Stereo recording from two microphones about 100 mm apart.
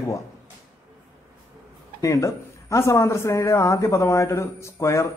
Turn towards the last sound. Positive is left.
turn(degrees=30)  # may be behind; listen again after turning